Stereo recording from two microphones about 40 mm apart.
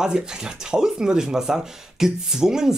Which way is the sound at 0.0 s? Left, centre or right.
Centre.